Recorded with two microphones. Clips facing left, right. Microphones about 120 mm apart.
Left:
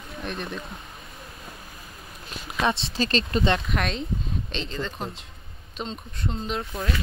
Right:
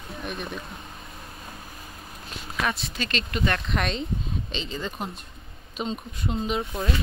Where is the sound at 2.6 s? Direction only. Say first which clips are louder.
Left 4 dB; 30° left (ahead or behind).